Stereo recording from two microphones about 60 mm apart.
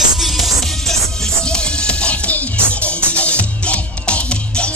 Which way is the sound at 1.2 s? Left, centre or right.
Centre.